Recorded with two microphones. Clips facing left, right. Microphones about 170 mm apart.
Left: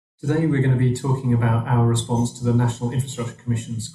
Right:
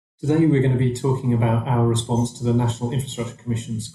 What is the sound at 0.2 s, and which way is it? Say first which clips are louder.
Speech: right 3 dB; 15° right (ahead or behind).